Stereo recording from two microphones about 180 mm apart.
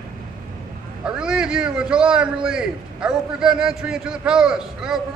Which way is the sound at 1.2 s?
5° right (ahead or behind).